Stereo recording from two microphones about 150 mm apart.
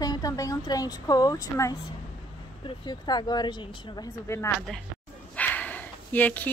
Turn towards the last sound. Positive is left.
turn(degrees=10)  # may be behind; listen again after turning